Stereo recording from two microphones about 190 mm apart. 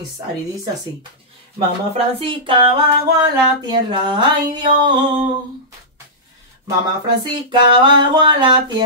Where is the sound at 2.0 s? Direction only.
30° right (ahead or behind).